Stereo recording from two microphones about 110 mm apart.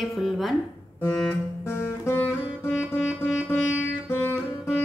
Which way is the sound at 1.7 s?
20° left (ahead or behind).